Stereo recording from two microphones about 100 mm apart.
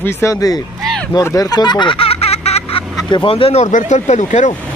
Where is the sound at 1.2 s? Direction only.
35° left (ahead or behind); by 2.8 s 90° left.